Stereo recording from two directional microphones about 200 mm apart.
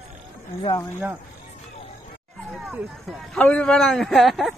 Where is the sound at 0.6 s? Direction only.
20° left (ahead or behind).